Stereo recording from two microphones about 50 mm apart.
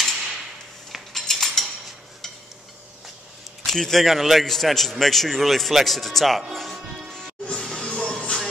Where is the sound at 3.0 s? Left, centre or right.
Centre.